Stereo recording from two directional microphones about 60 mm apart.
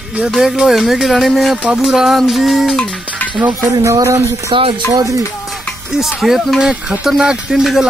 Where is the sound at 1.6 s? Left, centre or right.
Right.